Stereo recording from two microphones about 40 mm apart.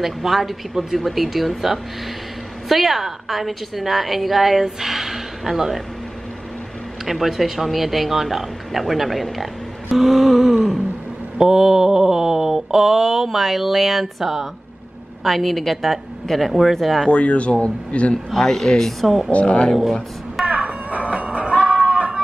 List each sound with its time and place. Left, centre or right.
0.0 s mantra: centre
7.1 s speech: centre
11.3 s mantra: centre
17.1 s speech: left
18.1 s speech: centre
19.3 s speech: left
20.4 s a sound: right
21.1 s music: right